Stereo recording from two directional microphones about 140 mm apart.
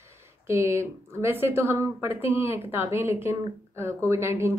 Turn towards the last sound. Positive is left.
turn(degrees=-20)  # may be behind; listen again after turning